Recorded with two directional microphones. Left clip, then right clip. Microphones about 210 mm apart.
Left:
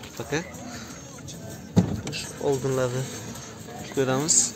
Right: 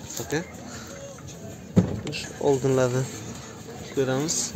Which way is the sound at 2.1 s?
20° right (ahead or behind).